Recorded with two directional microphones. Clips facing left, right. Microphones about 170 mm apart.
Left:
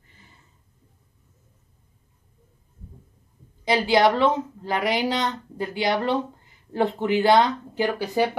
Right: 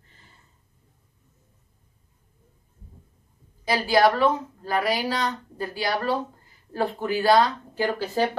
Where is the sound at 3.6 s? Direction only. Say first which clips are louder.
Left 1 dB; 20° left (ahead or behind).